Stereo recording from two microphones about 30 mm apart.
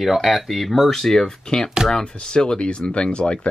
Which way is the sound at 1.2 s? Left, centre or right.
Left.